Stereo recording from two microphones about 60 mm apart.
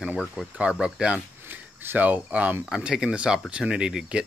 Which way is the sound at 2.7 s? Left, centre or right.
Centre.